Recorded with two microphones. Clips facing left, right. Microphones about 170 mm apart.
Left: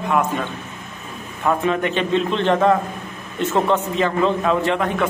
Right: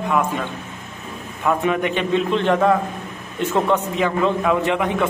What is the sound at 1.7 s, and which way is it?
A man's voice, 10° right (ahead or behind).